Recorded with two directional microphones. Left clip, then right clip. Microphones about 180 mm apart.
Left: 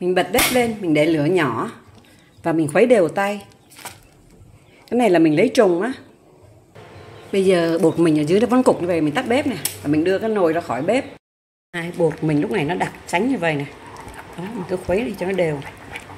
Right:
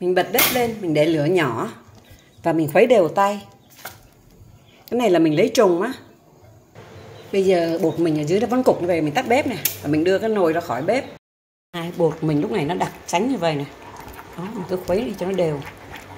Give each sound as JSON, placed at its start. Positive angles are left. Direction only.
{"t": 0.0, "sound": "speech", "side_deg": 15}
{"t": 4.8, "sound": "a woman's voice", "side_deg": 0}
{"t": 7.2, "sound": "a woman's voice", "side_deg": 20}
{"t": 10.7, "sound": "speech", "side_deg": 15}
{"t": 11.7, "sound": "speech", "side_deg": 0}